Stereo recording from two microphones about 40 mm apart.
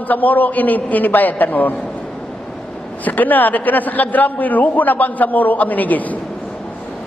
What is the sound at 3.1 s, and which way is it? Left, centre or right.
A man's voice, left.